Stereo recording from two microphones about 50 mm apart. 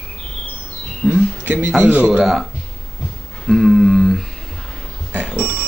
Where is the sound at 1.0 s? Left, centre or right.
Right.